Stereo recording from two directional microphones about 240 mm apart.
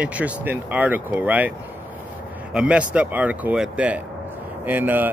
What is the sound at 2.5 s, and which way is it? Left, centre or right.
A man's voice, centre.